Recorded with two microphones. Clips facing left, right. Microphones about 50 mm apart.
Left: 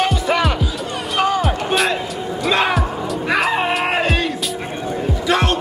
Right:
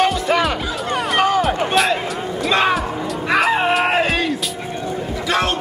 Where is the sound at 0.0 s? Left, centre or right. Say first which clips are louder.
Right 1 dB; centre.